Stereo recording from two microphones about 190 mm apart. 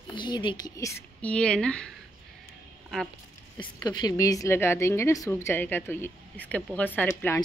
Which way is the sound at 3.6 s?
20° left (ahead or behind).